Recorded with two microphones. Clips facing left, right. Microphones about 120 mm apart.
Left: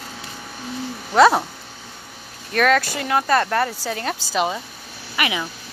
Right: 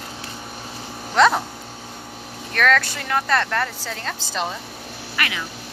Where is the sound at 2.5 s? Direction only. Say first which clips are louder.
Left 2 dB; 10° left (ahead or behind).